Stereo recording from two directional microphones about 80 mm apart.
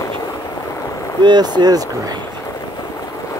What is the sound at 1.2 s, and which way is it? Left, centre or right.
Speech, right.